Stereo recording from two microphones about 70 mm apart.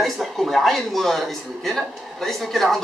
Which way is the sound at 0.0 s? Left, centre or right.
Centre.